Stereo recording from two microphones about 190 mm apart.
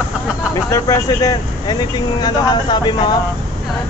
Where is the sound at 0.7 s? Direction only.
15° left (ahead or behind).